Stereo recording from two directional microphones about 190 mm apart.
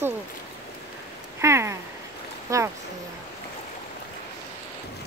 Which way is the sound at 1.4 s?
15° right (ahead or behind).